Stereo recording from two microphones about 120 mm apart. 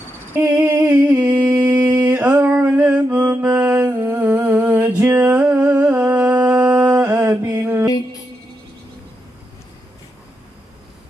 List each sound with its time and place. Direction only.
0.3 s a sound: 20° right (ahead or behind)
1.6 s mantra: 10° right (ahead or behind)
3.8 s humming: 20° right (ahead or behind)
6.9 s mantra: 25° right (ahead or behind)